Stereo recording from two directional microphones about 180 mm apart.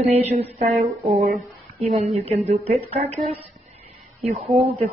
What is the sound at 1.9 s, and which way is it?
Speech, 35° right (ahead or behind).